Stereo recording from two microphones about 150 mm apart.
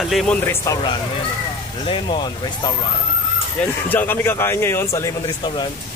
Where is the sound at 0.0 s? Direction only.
Centre (ahead or behind).